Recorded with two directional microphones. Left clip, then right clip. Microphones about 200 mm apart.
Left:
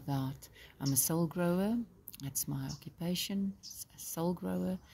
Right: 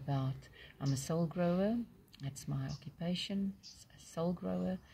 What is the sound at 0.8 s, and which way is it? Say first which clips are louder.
Speech: left 3 dB; centre (ahead or behind).